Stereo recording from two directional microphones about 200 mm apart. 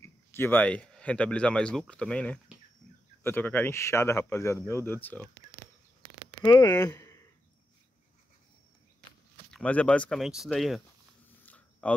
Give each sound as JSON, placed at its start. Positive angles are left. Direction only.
{"t": 0.0, "sound": "speech", "side_deg": 10}
{"t": 6.4, "sound": "speech", "side_deg": 20}
{"t": 9.5, "sound": "speech", "side_deg": 5}
{"t": 11.4, "sound": "zipper", "side_deg": 5}